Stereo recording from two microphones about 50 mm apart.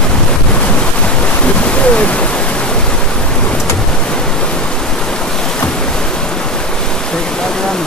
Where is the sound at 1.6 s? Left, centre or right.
Left.